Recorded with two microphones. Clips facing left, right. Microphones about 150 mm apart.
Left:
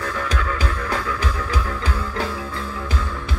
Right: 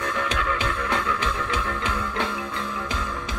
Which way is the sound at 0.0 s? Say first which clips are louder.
Left 1 dB; 35° left (ahead or behind).